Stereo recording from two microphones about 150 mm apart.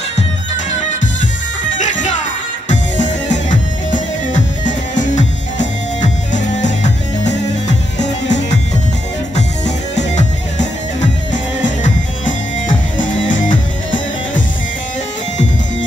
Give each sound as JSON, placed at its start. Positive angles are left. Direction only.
{"t": 1.8, "sound": "music", "side_deg": 55}
{"t": 9.9, "sound": "music", "side_deg": 50}